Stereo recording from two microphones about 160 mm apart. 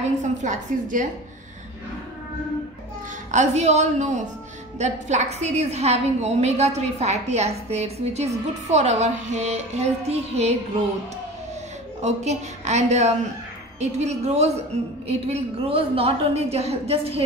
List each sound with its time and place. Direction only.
0.2 s a woman's voice: 50° right (ahead or behind)
3.3 s a woman's voice: 45° right (ahead or behind)
12.0 s a woman's voice: 45° right (ahead or behind)